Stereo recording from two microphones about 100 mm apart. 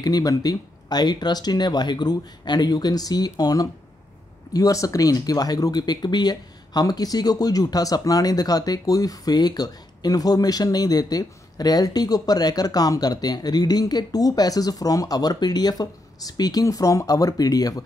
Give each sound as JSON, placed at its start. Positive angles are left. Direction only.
{"t": 0.0, "sound": "speech", "side_deg": 40}